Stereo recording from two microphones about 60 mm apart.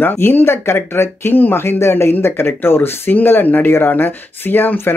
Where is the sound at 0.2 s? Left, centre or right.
Left.